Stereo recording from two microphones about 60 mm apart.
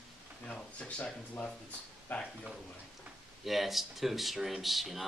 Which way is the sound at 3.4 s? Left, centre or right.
Centre.